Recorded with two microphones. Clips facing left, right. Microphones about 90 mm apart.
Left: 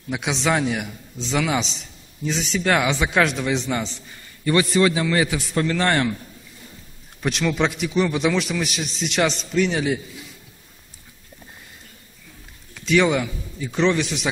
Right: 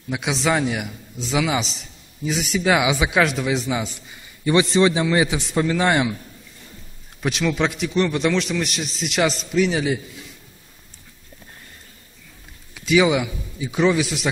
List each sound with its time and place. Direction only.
0.1 s a man's voice: centre (ahead or behind)
4.5 s a man's voice: 20° right (ahead or behind)
7.2 s a man's voice: centre (ahead or behind)
12.7 s a man's voice: 5° right (ahead or behind)